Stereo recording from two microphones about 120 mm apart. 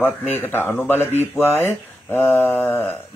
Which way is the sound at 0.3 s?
20° left (ahead or behind).